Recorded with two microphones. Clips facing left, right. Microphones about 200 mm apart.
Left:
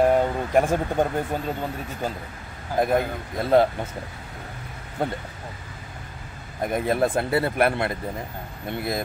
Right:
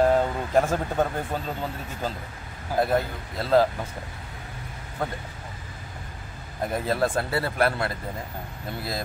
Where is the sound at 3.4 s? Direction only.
20° left (ahead or behind).